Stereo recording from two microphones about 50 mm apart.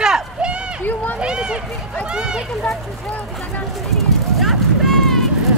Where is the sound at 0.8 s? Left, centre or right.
Left.